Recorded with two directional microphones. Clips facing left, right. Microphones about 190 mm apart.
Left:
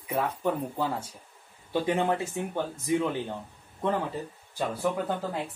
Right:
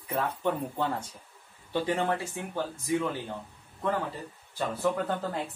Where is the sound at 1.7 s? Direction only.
20° left (ahead or behind).